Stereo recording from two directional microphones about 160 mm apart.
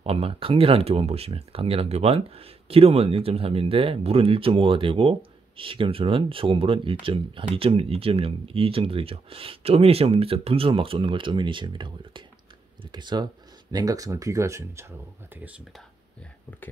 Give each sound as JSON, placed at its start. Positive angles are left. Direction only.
{"t": 0.0, "sound": "speech", "side_deg": -40}